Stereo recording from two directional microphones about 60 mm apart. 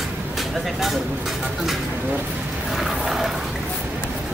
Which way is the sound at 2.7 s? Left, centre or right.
Centre.